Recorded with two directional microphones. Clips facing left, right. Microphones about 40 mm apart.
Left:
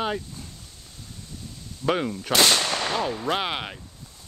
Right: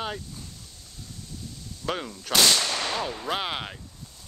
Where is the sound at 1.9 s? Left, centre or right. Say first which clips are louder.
Left 5 dB; left.